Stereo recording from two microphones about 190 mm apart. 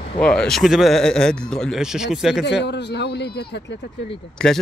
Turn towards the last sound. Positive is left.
turn(degrees=5)  # may be behind; listen again after turning